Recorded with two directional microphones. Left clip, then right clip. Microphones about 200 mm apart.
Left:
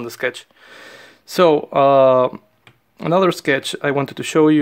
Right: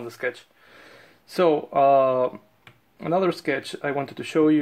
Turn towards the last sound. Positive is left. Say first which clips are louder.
# left 6 dB
turn(degrees=40)  # may be behind; listen again after turning